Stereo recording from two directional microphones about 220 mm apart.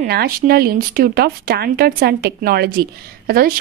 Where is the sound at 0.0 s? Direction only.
45° right (ahead or behind).